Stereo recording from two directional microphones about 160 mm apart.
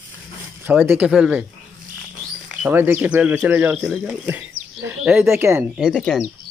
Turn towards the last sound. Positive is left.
turn(degrees=5)  # may be behind; listen again after turning